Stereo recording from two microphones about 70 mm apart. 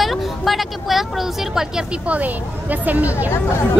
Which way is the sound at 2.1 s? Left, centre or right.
Right.